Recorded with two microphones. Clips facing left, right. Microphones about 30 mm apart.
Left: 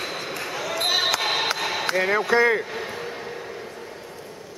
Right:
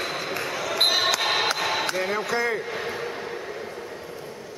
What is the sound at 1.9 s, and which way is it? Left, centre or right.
Speech, centre.